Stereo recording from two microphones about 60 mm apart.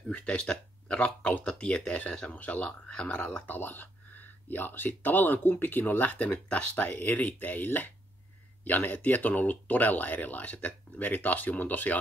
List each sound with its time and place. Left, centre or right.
0.2 s speech: centre